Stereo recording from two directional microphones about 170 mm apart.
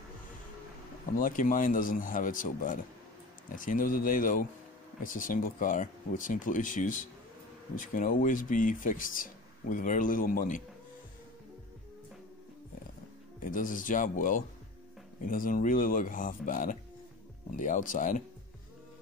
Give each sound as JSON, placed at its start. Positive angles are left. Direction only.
{"t": 1.1, "sound": "speech", "side_deg": 55}
{"t": 13.4, "sound": "speech", "side_deg": 50}